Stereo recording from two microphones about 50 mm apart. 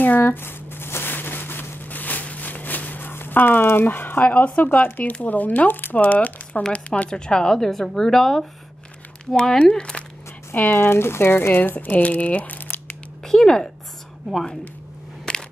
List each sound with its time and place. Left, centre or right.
0.0 s a sound: left
4.6 s speech: left
6.7 s speech: left
10.5 s speech: left
10.8 s speech: left
13.2 s speech: centre
15.3 s a sound: centre